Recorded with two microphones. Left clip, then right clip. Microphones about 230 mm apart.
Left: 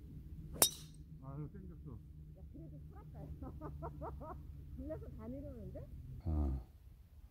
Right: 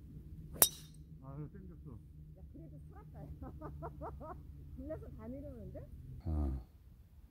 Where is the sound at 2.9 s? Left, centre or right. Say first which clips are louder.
Right 1 dB; right.